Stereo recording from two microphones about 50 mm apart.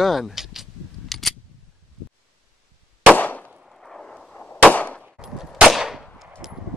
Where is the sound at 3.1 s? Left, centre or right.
Left.